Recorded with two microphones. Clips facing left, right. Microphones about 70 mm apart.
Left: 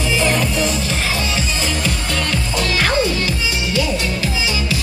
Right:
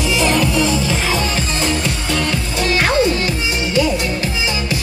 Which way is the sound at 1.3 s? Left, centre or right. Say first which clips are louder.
Right 2 dB; right.